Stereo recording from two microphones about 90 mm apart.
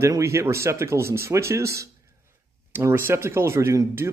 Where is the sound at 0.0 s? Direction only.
30° right (ahead or behind).